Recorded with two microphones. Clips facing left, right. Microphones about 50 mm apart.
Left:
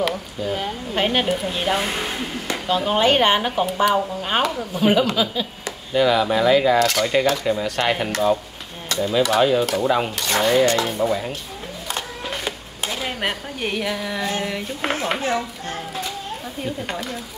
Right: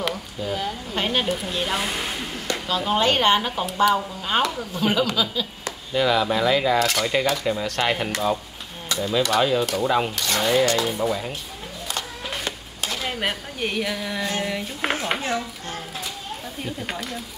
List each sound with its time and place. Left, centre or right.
0.0 s speech: centre
0.9 s speech: left
1.5 s cutlery: centre
2.4 s speech: centre
3.6 s speech: centre
3.9 s speech: left
5.9 s speech: centre
9.0 s cutlery: centre
10.9 s speech: centre
12.4 s speech: centre
16.6 s speech: centre